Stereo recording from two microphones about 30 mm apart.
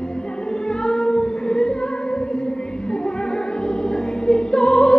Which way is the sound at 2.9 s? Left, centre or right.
Left.